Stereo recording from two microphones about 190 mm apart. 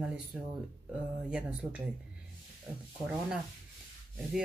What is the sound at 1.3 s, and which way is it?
Speech, 5° right (ahead or behind).